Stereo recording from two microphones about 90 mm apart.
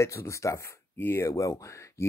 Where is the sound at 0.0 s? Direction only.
35° left (ahead or behind).